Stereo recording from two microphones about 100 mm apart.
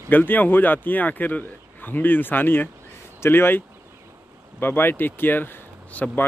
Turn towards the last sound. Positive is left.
turn(degrees=10)  # may be behind; listen again after turning